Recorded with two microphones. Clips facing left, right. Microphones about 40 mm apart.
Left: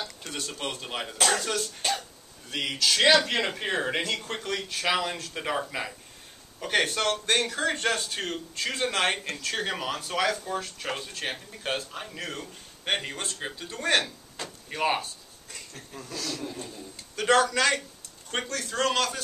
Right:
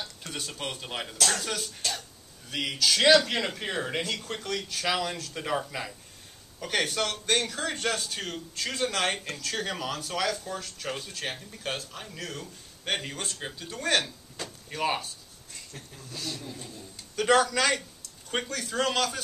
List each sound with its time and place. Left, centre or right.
0.3 s a man's voice: centre
1.8 s speech: left
2.5 s a man's voice: centre
16.5 s a man's voice: centre